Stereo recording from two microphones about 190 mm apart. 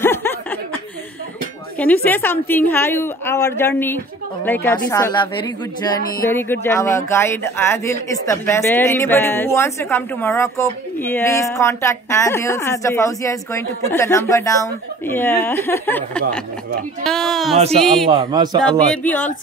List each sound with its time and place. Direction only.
0.0 s snicker: 10° left (ahead or behind)
1.8 s a man's voice: 10° left (ahead or behind)
18.0 s speech: 25° right (ahead or behind)
18.6 s speech: 5° left (ahead or behind)